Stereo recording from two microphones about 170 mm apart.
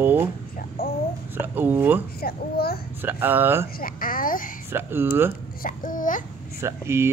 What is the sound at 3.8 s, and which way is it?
Speech, 55° left (ahead or behind).